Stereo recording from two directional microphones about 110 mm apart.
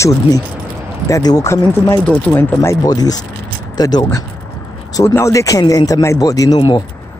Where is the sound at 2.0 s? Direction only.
10° left (ahead or behind).